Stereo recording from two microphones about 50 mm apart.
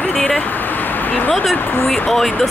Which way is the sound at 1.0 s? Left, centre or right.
Left.